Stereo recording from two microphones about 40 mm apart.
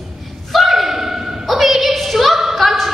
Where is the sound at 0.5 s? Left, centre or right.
Centre.